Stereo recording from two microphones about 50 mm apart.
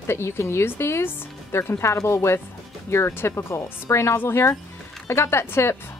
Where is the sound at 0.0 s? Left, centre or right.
Left.